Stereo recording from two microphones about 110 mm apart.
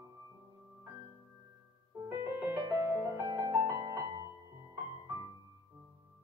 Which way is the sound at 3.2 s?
30° right (ahead or behind).